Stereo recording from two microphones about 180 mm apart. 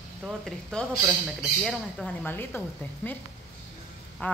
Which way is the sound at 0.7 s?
5° left (ahead or behind).